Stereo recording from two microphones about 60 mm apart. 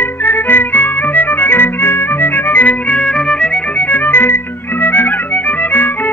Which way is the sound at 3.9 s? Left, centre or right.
Left.